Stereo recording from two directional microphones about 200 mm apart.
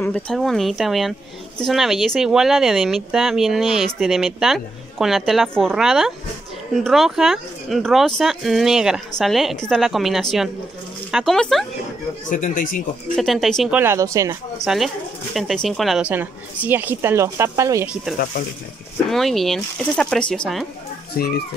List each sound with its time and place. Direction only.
0.0 s speech: 5° left (ahead or behind)
12.3 s speech: 40° left (ahead or behind)
13.1 s speech: centre (ahead or behind)
13.7 s speech: 15° right (ahead or behind)
14.6 s speech: centre (ahead or behind)
19.0 s speech: centre (ahead or behind)
21.2 s a child's voice: 50° left (ahead or behind)